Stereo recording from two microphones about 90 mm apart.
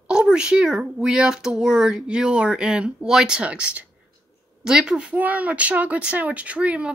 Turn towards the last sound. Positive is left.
turn(degrees=-15)  # may be behind; listen again after turning